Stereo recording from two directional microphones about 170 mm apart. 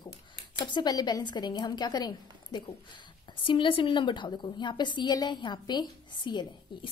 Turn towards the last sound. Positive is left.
turn(degrees=25)  # may be behind; listen again after turning